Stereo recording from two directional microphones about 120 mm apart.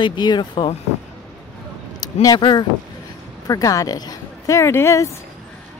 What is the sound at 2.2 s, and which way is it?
Speech, 35° left (ahead or behind).